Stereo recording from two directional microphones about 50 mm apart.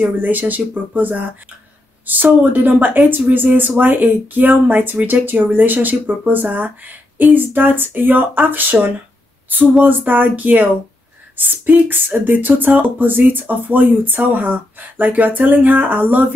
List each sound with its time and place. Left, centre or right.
0.2 s speech: right